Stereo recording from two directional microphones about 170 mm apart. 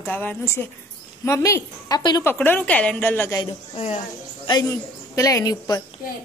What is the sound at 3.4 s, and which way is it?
A woman's voice, 35° left (ahead or behind).